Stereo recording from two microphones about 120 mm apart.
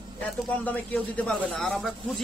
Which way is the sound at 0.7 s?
15° left (ahead or behind).